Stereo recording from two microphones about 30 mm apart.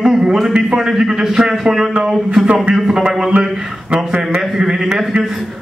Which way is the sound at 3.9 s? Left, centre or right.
Right.